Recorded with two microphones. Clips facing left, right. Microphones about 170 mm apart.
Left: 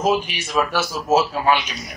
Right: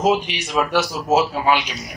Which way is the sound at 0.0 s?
20° right (ahead or behind).